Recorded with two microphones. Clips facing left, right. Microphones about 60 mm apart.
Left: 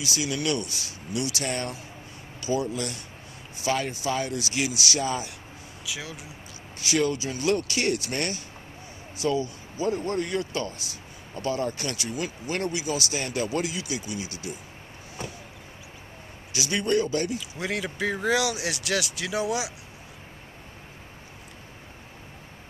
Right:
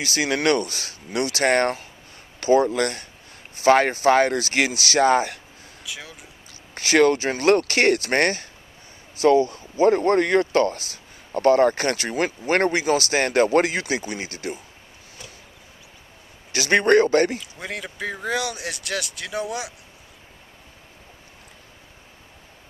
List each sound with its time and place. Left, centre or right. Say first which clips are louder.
0.0 s speech: right 7 dB; right
5.9 s speech: left 1 dB; centre
6.7 s speech: right 8 dB; right
16.5 s speech: right 8 dB; right
17.6 s speech: left 2 dB; centre